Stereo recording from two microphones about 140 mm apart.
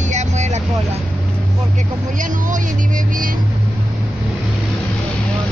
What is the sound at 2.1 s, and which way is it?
Speech, 65° right (ahead or behind).